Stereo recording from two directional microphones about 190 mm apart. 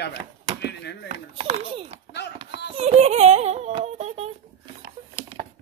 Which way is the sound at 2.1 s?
65° left (ahead or behind).